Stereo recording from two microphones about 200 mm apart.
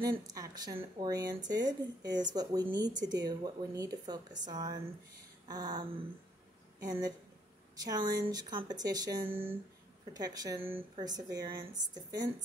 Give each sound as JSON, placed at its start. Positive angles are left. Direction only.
{"t": 0.0, "sound": "speech", "side_deg": -20}